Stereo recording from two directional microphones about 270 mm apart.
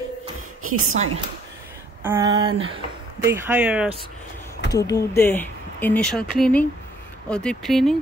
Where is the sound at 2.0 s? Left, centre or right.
Centre.